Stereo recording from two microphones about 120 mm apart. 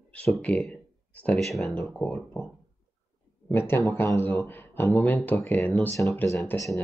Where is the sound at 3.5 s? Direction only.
20° left (ahead or behind).